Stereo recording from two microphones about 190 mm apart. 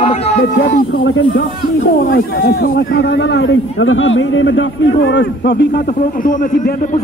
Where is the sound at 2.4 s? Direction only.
55° left (ahead or behind); by 5.7 s 75° left (ahead or behind).